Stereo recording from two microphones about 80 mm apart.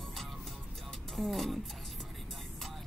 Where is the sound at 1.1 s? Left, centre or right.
Centre.